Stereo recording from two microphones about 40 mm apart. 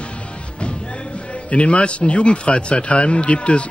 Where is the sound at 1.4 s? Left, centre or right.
Left.